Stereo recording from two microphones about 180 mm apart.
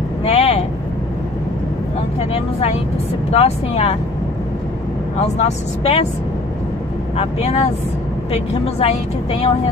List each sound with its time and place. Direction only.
0.2 s vehicle: 35° left (ahead or behind)
2.3 s vehicle: 35° left (ahead or behind)
3.3 s a woman's voice: 35° left (ahead or behind)
5.2 s a woman's voice: 35° left (ahead or behind)
7.2 s a woman's voice: 35° left (ahead or behind)